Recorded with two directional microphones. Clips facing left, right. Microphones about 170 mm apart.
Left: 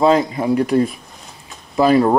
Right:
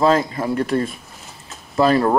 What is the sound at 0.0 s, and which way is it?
Speech, centre (ahead or behind).